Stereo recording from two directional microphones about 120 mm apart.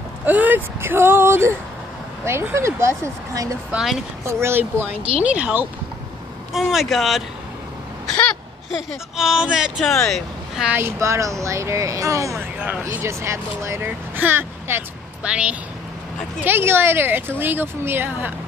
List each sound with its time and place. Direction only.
0.2 s speech: 15° right (ahead or behind)
3.7 s speech: centre (ahead or behind)
4.2 s speech: 20° right (ahead or behind)
6.5 s speech: centre (ahead or behind)
9.1 s speech: 5° right (ahead or behind)
10.7 s speech: 20° right (ahead or behind)
12.5 s speech: 15° right (ahead or behind)
16.4 s speech: 20° right (ahead or behind)